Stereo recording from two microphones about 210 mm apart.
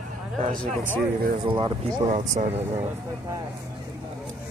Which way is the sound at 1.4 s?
25° right (ahead or behind).